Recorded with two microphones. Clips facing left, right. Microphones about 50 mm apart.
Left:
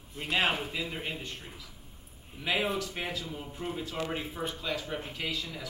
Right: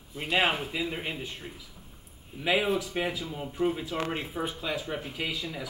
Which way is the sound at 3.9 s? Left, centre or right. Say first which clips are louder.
Right 3 dB; right.